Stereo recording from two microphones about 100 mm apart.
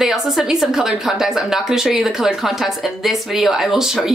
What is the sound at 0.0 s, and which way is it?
Speech, 5° right (ahead or behind).